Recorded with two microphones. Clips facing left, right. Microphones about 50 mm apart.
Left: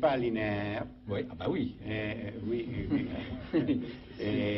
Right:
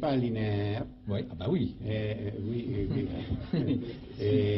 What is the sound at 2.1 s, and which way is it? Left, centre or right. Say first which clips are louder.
Speech: right 2 dB; left.